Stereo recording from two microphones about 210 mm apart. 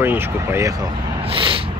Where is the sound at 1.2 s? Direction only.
25° right (ahead or behind).